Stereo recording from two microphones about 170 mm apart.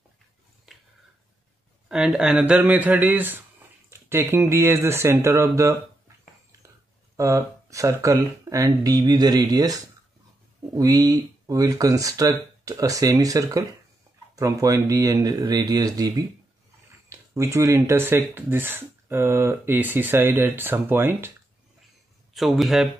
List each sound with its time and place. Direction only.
0.7 s a sound: centre (ahead or behind)
1.9 s speech: 5° right (ahead or behind)
7.2 s speech: 20° right (ahead or behind)
10.8 s speech: 20° right (ahead or behind)
22.3 s speech: centre (ahead or behind)